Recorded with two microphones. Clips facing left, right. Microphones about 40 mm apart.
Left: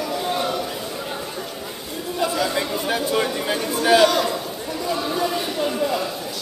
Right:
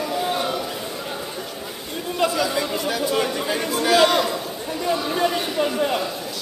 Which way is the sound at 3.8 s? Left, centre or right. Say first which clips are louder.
Left 2 dB; left.